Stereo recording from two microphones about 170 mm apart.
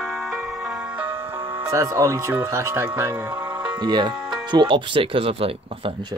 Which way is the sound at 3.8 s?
25° right (ahead or behind).